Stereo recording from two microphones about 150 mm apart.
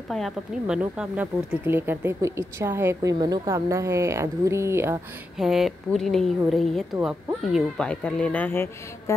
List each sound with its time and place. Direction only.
0.1 s a woman's voice: centre (ahead or behind)
0.7 s speech: 10° right (ahead or behind)
5.4 s a woman's voice: centre (ahead or behind); by 9.1 s 15° left (ahead or behind)